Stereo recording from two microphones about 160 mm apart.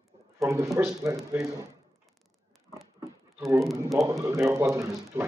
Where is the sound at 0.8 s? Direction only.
10° right (ahead or behind).